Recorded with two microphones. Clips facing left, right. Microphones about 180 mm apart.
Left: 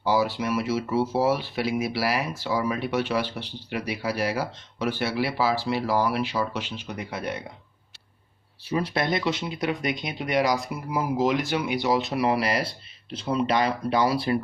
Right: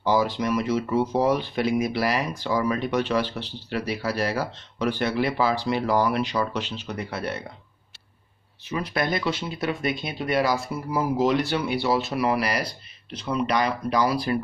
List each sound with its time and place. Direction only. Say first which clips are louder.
0.0 s speech: right 1 dB; 10° left (ahead or behind)
8.6 s speech: left 1 dB; 30° left (ahead or behind)